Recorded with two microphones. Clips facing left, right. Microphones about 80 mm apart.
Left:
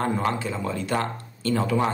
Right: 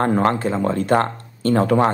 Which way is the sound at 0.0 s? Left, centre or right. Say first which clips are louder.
Right 7 dB; right.